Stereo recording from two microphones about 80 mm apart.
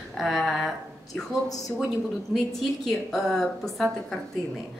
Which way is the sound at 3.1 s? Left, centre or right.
Centre.